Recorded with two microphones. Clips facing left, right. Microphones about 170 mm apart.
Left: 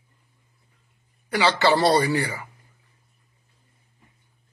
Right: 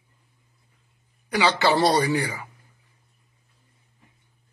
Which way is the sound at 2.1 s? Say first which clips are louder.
Even; 15° right (ahead or behind).